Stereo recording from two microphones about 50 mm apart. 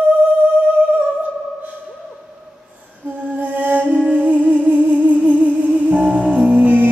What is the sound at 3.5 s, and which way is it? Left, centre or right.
Music, right.